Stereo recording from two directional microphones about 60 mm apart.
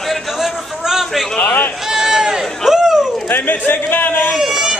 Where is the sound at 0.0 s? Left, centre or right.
Centre.